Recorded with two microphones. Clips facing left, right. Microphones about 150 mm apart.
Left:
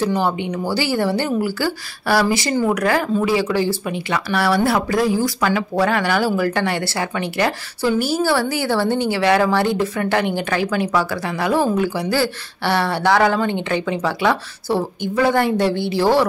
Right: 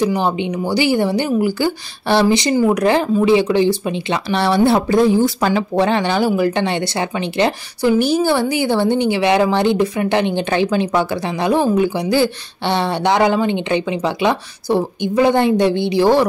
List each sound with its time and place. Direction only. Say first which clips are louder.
0.0 s speech: right 2 dB; 15° right (ahead or behind)